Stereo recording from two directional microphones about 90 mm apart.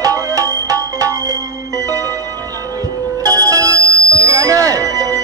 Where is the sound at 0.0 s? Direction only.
40° right (ahead or behind).